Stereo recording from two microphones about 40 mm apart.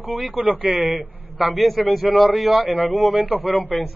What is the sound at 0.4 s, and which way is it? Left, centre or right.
Speech, right.